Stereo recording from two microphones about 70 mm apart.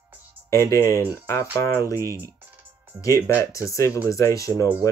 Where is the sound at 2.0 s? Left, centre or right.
Right.